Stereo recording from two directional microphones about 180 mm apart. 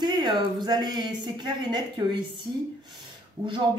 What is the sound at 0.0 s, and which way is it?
A woman's voice, 25° right (ahead or behind).